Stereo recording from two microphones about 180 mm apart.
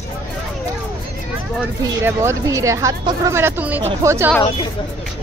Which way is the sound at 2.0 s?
15° right (ahead or behind).